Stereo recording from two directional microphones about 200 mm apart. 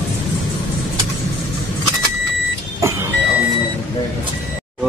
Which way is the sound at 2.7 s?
15° right (ahead or behind).